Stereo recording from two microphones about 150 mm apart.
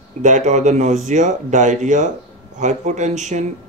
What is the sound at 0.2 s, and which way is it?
Speech, 55° right (ahead or behind).